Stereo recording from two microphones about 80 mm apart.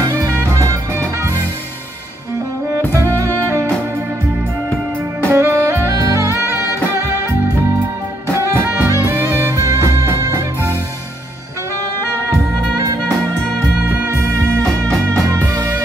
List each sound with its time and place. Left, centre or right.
0.2 s music: right
2.8 s music: left
5.3 s saxophone: right
8.3 s music: right
14.0 s music: right